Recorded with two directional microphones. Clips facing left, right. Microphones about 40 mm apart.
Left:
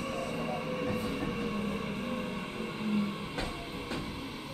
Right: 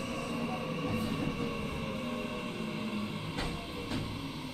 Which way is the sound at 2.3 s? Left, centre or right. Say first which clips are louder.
Even; centre.